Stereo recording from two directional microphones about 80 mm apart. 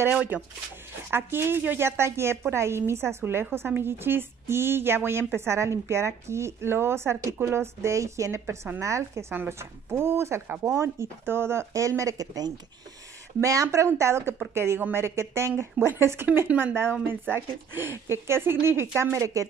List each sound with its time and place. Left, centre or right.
0.1 s speech: centre
1.1 s a woman's voice: right